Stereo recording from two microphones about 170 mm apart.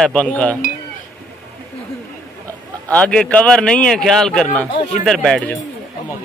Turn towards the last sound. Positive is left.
turn(degrees=5)  # may be behind; listen again after turning